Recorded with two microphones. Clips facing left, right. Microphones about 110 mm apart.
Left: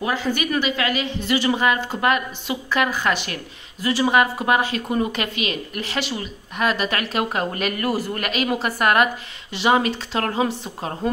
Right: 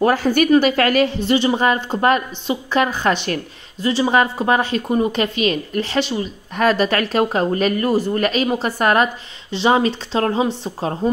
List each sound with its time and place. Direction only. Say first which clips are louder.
0.0 s a woman's voice: right 8 dB; 45° right (ahead or behind)
1.2 s speech: right 3 dB; 30° right (ahead or behind)
6.5 s speech: right 6 dB; 35° right (ahead or behind)